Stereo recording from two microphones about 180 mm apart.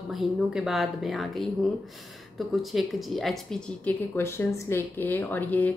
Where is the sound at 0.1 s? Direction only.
Centre (ahead or behind).